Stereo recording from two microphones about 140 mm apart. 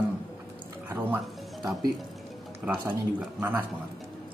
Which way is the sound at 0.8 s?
15° right (ahead or behind).